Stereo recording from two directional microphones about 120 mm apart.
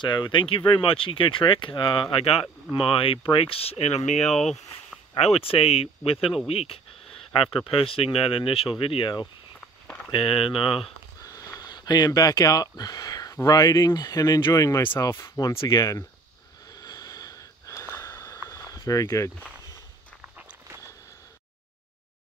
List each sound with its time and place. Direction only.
0.0 s speech: 40° left (ahead or behind); by 4.2 s 70° left (ahead or behind)
4.2 s speech: 5° left (ahead or behind)
5.2 s speech: 55° left (ahead or behind)
11.2 s speech: 30° left (ahead or behind)
16.8 s wheeze: 30° left (ahead or behind)
18.1 s walk: 25° left (ahead or behind)
18.5 s a sound: 25° left (ahead or behind)